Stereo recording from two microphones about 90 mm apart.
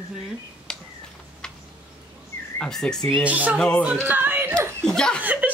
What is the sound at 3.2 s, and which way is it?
Speech, 15° right (ahead or behind).